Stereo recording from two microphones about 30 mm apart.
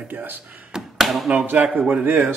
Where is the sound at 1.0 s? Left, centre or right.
Centre.